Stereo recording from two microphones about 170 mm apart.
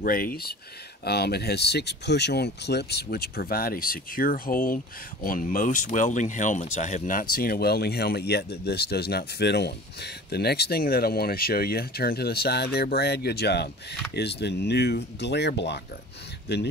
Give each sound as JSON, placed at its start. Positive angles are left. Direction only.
{"t": 0.0, "sound": "speech", "side_deg": 55}